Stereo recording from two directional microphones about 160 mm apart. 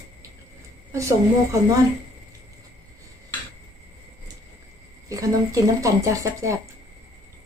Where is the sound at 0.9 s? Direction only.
20° right (ahead or behind).